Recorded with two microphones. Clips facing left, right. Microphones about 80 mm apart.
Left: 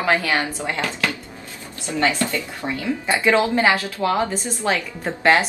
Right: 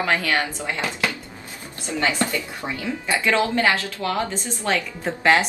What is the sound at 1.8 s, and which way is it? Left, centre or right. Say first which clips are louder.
A woman's voice: left 2 dB; right.